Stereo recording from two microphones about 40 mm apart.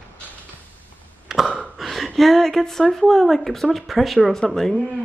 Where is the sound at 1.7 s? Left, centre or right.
Centre.